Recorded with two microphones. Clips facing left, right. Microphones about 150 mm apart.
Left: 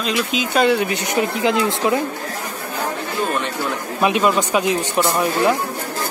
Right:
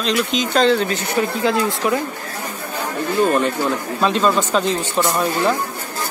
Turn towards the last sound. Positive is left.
turn(degrees=10)  # may be behind; listen again after turning